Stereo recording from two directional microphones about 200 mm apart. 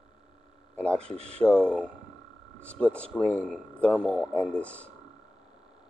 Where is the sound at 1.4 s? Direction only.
5° left (ahead or behind).